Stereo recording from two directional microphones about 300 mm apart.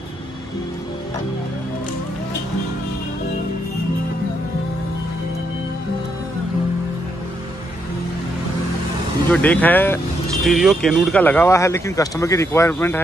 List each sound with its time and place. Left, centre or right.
9.3 s speech: centre